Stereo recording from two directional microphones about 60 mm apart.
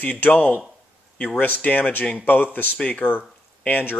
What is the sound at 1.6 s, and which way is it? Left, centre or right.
A man's voice, left.